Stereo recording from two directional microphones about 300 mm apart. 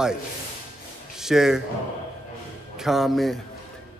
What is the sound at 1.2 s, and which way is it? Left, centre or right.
Speech, centre.